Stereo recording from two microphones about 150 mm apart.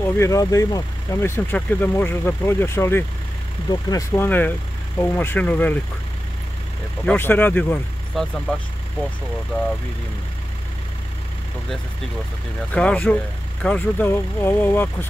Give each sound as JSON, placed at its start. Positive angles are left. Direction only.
{"t": 0.0, "sound": "speech", "side_deg": 15}
{"t": 7.1, "sound": "speech", "side_deg": 15}
{"t": 8.1, "sound": "speech", "side_deg": 0}
{"t": 12.7, "sound": "speech", "side_deg": 10}